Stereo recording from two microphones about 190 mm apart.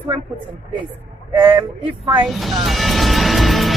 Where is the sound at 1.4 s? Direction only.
25° right (ahead or behind).